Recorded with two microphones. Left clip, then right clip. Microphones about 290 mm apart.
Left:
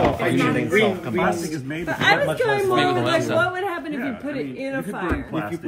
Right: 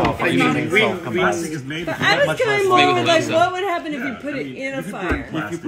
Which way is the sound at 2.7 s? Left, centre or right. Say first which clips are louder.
Right 5 dB; left.